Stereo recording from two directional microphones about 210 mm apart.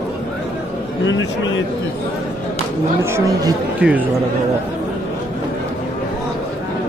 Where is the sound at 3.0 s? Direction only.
15° right (ahead or behind).